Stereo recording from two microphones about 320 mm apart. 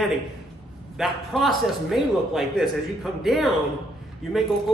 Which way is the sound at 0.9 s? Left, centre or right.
Centre.